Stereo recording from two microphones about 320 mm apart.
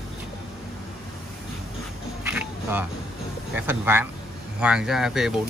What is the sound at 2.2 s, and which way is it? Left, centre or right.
Music, centre.